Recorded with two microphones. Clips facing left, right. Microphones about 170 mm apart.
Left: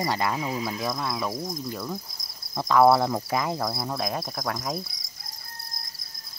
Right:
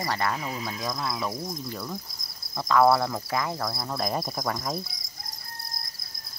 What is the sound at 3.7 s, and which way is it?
Cricket, 5° left (ahead or behind).